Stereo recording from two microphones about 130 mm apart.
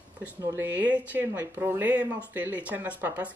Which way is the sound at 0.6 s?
15° right (ahead or behind).